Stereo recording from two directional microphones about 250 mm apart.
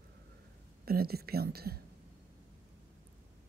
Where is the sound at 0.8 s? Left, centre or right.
Right.